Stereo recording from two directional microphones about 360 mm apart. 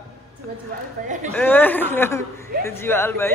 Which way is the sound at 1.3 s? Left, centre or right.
Centre.